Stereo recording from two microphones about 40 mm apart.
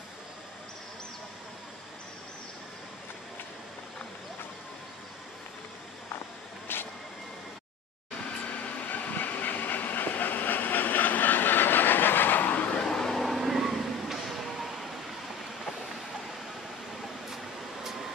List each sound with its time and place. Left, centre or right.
6.7 s vehicle: left
8.6 s train: left
12.8 s vehicle: centre
13.2 s vehicle: centre